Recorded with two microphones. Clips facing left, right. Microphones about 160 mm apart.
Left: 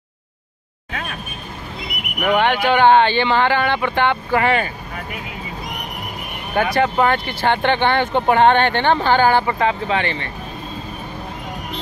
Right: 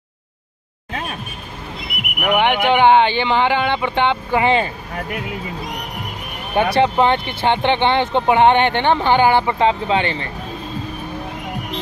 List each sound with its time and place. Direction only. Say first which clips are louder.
2.1 s speech: even; 10° right (ahead or behind)
6.5 s speech: right 2 dB; 25° right (ahead or behind)